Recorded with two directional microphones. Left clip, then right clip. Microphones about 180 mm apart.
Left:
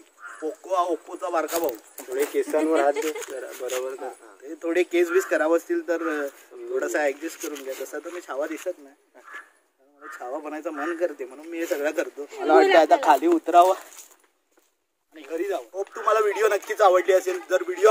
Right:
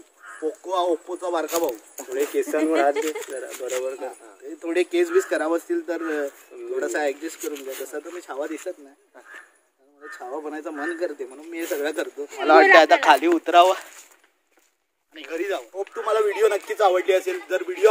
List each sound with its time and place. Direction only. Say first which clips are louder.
0.4 s speech: right 1 dB; centre (ahead or behind)
1.2 s speech: left 2 dB; 20° left (ahead or behind)
2.0 s a sound: right 1 dB; 50° right (ahead or behind)
2.3 s speech: even; 55° right (ahead or behind)
3.3 s speech: right 1 dB; 35° right (ahead or behind)
4.6 s speech: even; 10° left (ahead or behind)
7.3 s speech: right 2 dB; 15° right (ahead or behind)
7.6 s speech: even; 10° left (ahead or behind)
10.2 s speech: even; 20° left (ahead or behind)
10.7 s a man's voice: left 1 dB; centre (ahead or behind)
11.0 s speech: left 1 dB; 10° left (ahead or behind)
12.3 s a man's voice: right 4 dB; centre (ahead or behind)
15.1 s a man's voice: right 1 dB; 5° left (ahead or behind)